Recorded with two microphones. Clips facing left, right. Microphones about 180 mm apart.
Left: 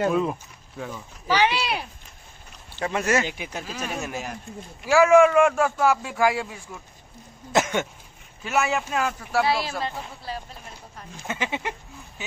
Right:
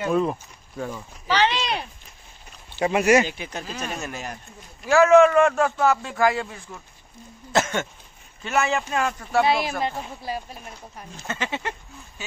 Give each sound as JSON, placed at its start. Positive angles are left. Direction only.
{"t": 0.1, "sound": "speech", "side_deg": 0}
{"t": 1.2, "sound": "a sound", "side_deg": 10}
{"t": 2.8, "sound": "speech", "side_deg": -15}
{"t": 3.3, "sound": "a man's voice", "side_deg": 10}
{"t": 9.4, "sound": "speech", "side_deg": -20}
{"t": 11.1, "sound": "a man's voice", "side_deg": 15}